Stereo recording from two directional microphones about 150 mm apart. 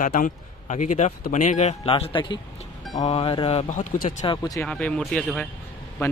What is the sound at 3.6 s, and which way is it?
Speech, 60° left (ahead or behind).